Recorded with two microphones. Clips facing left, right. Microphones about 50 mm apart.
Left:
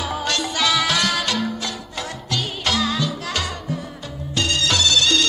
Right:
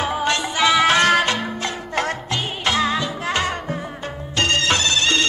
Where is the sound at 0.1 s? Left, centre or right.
Right.